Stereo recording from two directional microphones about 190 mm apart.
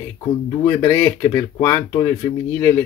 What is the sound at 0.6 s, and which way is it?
Speech, 15° left (ahead or behind).